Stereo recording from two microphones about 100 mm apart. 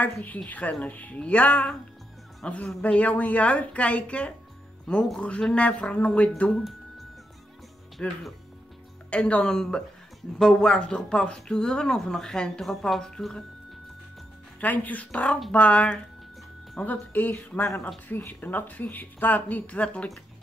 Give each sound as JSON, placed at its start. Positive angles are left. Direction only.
{"t": 0.0, "sound": "speech", "side_deg": 15}
{"t": 8.0, "sound": "speech", "side_deg": 10}
{"t": 14.6, "sound": "speech", "side_deg": 15}